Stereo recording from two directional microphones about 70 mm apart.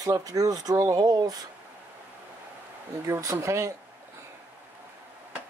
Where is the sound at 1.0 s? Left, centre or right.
Right.